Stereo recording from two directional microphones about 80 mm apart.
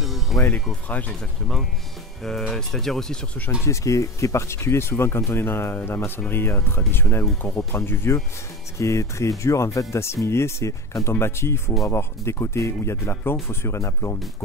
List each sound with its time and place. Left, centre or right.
0.0 s music: centre
0.8 s speech: centre
2.2 s speech: centre
3.6 s speech: left